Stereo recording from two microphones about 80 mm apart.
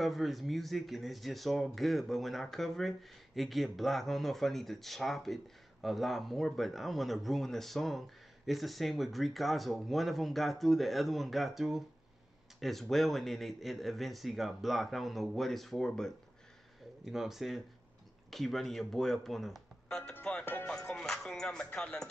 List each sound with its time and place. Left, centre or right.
0.0 s speech: centre
20.6 s music: centre
21.7 s speech: centre